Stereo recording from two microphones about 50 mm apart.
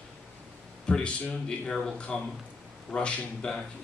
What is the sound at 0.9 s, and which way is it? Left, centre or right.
Speech, left.